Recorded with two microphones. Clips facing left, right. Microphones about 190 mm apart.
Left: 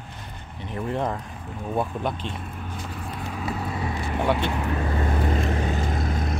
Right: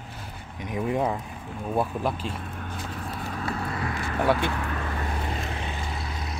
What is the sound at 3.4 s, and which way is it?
Vehicle, 10° left (ahead or behind).